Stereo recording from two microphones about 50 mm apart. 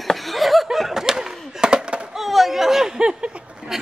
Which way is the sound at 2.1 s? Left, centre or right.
Centre.